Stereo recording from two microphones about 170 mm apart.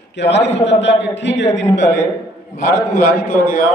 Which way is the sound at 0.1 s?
90° left.